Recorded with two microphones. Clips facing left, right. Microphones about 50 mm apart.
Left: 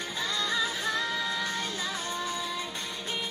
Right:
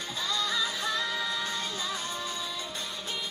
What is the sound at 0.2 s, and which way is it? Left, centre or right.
Music, left.